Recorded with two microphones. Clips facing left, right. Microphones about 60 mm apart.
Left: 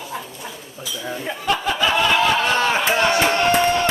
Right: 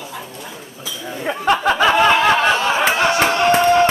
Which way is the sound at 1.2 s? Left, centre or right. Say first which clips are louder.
Right 7 dB; right.